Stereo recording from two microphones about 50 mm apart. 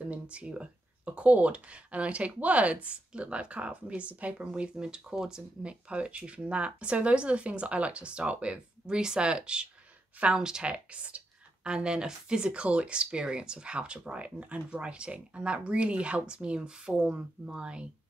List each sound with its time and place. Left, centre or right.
0.0 s speech: right